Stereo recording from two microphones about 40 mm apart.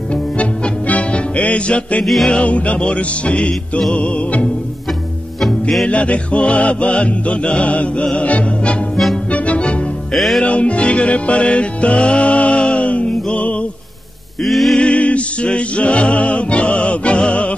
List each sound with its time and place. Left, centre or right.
0.1 s music: left
5.4 s music: centre
5.9 s music: left
8.9 s music: centre
9.3 s music: left
10.1 s music: centre
10.4 s music: left
14.4 s music: centre
14.8 s music: left